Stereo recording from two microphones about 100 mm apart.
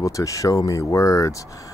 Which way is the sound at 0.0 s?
35° left (ahead or behind).